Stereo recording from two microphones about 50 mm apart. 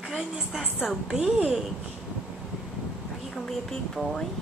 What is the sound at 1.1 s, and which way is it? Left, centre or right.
Speech, centre.